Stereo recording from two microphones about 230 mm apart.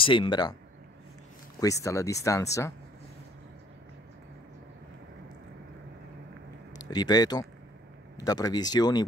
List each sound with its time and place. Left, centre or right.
0.0 s speech: left
1.6 s speech: centre
6.7 s speech: centre